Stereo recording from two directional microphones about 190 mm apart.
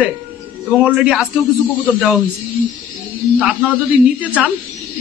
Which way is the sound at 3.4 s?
10° right (ahead or behind).